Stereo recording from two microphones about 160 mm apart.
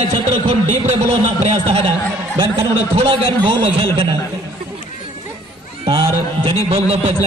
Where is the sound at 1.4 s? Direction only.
35° right (ahead or behind).